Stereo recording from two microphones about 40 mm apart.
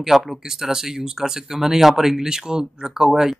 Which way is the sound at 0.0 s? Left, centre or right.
Centre.